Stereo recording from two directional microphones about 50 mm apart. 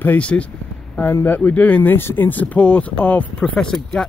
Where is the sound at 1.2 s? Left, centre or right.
Left.